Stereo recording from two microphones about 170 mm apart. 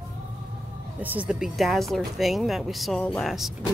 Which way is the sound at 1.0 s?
10° right (ahead or behind).